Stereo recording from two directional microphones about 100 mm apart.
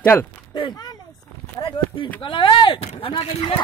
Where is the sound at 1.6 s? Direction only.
55° left (ahead or behind).